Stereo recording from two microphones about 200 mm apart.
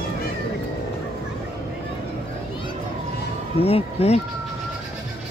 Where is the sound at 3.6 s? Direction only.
30° left (ahead or behind).